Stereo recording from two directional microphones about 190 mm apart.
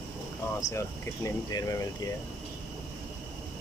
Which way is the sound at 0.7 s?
15° left (ahead or behind).